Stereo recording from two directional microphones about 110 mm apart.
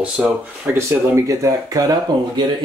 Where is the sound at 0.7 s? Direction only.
25° right (ahead or behind).